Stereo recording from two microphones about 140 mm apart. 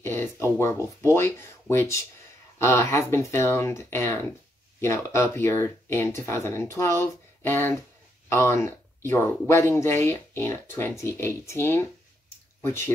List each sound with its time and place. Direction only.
0.0 s speech: 15° left (ahead or behind)